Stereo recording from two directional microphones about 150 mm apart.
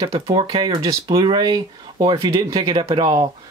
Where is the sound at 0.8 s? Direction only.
25° right (ahead or behind).